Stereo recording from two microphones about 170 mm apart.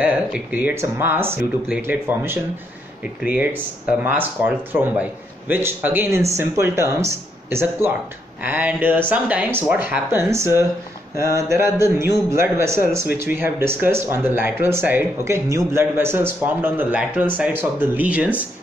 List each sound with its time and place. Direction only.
0.0 s speech: 10° right (ahead or behind)